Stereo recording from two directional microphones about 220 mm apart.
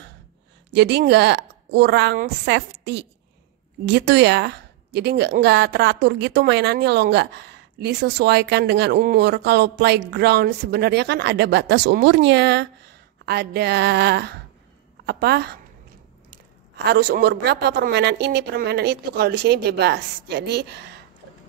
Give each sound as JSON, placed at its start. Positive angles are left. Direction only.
{"t": 0.7, "sound": "a woman's voice", "side_deg": -50}
{"t": 16.7, "sound": "a woman's voice", "side_deg": -45}